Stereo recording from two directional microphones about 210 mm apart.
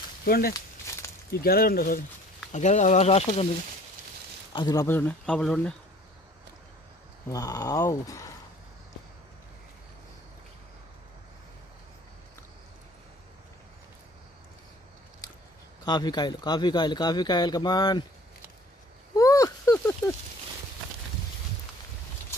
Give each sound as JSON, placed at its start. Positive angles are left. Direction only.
{"t": 0.2, "sound": "speech", "side_deg": 45}
{"t": 0.9, "sound": "a sound", "side_deg": 15}
{"t": 1.4, "sound": "speech", "side_deg": 45}
{"t": 4.6, "sound": "speech", "side_deg": 20}
{"t": 7.2, "sound": "speech", "side_deg": 15}
{"t": 15.8, "sound": "speech", "side_deg": 20}
{"t": 19.1, "sound": "a sound", "side_deg": 15}